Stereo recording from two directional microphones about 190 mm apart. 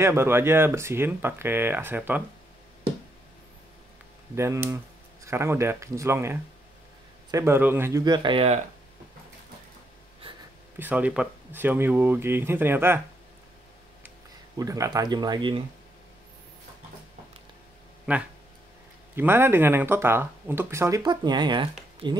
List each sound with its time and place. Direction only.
0.0 s speech: 15° right (ahead or behind)
4.4 s speech: 15° right (ahead or behind)
10.8 s speech: 10° right (ahead or behind)
14.6 s speech: 20° right (ahead or behind)
18.1 s speech: 5° right (ahead or behind); by 21.6 s 25° right (ahead or behind)